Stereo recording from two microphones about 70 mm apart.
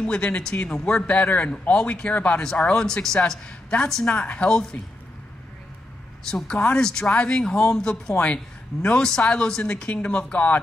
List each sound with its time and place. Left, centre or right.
0.0 s a man's voice: centre
6.3 s a man's voice: centre